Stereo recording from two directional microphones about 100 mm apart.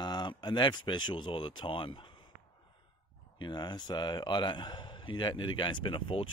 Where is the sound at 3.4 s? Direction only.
45° left (ahead or behind).